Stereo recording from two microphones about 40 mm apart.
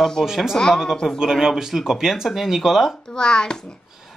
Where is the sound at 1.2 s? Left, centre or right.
Centre.